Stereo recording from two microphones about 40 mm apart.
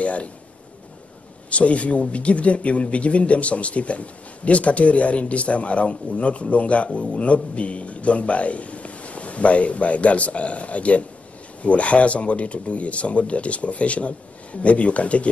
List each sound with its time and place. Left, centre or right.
0.0 s speech: left
1.5 s speech: left